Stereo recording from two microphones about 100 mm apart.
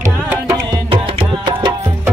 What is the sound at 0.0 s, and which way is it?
Music, 30° right (ahead or behind).